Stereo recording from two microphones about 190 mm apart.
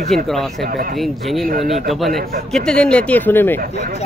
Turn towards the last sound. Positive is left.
turn(degrees=10)  # may be behind; listen again after turning